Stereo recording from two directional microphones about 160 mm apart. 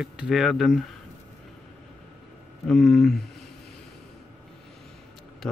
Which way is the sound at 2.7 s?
Centre (ahead or behind).